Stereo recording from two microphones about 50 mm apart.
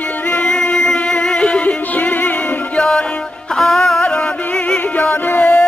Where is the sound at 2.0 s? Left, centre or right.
Left.